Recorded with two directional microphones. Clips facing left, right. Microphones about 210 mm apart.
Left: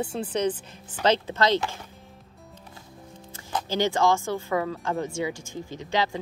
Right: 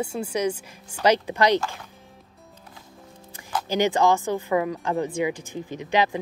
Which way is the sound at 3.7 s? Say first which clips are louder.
Right 2 dB; 15° right (ahead or behind).